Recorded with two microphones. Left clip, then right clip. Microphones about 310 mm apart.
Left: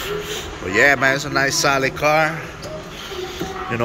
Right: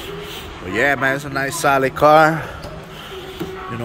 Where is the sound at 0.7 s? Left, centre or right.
Centre.